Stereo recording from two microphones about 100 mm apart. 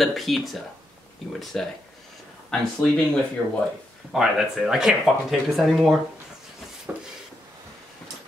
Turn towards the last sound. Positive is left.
turn(degrees=-15)  # may be behind; listen again after turning